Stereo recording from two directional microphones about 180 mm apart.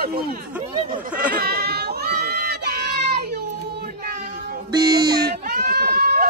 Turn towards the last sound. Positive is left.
turn(degrees=-55)  # may be behind; listen again after turning